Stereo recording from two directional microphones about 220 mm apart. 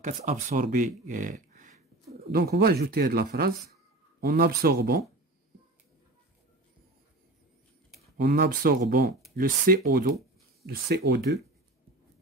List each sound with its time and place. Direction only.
0.0 s speech: 35° right (ahead or behind)
2.3 s speech: 45° right (ahead or behind)
8.2 s speech: 45° right (ahead or behind)